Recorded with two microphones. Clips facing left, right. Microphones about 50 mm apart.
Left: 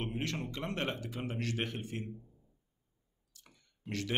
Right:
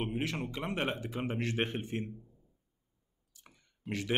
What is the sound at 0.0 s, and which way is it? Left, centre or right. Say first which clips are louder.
Speech: right 2 dB; centre.